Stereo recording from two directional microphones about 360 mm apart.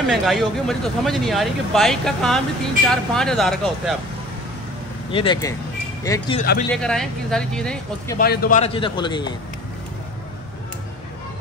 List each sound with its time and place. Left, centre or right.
0.1 s speech: centre
5.1 s a man's voice: centre
8.2 s a man's voice: left